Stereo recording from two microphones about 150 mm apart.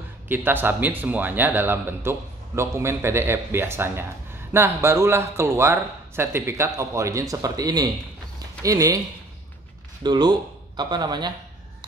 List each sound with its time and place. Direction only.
0.3 s speech: 15° right (ahead or behind)
10.0 s a man's voice: 30° right (ahead or behind)